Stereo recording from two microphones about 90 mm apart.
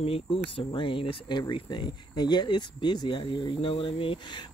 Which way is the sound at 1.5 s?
55° left (ahead or behind).